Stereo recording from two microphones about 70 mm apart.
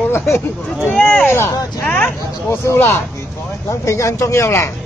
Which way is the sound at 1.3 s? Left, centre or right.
Left.